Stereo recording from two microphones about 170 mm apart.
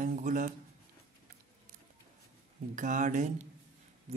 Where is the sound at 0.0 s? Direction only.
50° right (ahead or behind).